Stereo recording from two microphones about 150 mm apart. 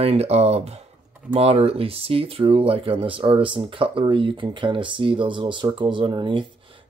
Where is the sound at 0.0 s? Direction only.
45° right (ahead or behind).